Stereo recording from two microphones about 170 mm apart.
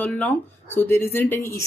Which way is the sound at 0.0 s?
10° left (ahead or behind).